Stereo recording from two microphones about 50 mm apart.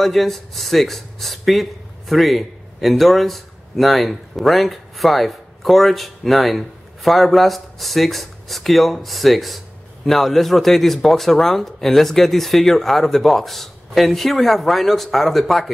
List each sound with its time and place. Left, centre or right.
0.0 s speech: centre